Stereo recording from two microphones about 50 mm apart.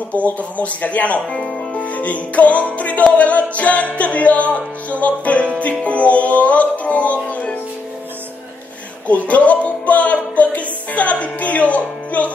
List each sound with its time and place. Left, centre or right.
0.1 s music: left
9.0 s music: left